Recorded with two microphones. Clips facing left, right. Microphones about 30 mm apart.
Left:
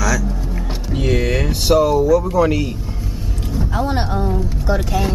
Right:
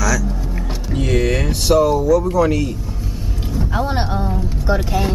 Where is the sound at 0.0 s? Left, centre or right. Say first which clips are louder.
Even; centre.